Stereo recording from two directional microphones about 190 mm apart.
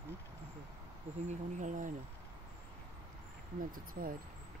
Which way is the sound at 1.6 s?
40° right (ahead or behind).